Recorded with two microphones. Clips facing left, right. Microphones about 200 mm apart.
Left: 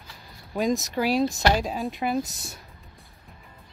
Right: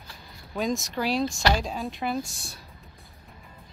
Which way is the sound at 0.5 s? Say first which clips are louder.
Left 3 dB; centre (ahead or behind).